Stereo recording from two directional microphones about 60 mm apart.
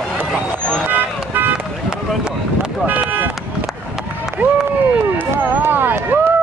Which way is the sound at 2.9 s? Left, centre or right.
Right.